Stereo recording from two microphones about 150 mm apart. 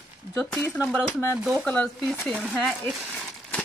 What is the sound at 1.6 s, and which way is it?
Speech, 5° left (ahead or behind).